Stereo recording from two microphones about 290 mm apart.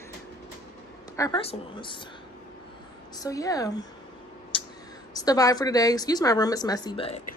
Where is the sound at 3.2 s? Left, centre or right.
Centre.